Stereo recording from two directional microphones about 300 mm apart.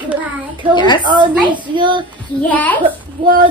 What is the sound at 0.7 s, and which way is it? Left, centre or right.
Speech, centre.